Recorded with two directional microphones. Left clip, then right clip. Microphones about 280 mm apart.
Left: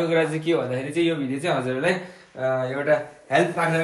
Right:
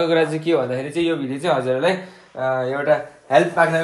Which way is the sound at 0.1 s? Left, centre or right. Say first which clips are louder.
Right 4 dB; centre.